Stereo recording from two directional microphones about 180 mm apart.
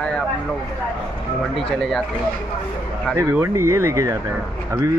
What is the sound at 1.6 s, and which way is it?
Speech, 5° left (ahead or behind).